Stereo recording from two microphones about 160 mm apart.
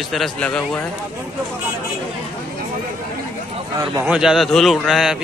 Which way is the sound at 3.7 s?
20° right (ahead or behind).